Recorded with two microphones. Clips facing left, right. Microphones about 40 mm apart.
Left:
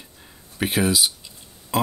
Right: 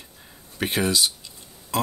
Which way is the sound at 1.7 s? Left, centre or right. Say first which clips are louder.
Left 3 dB; centre.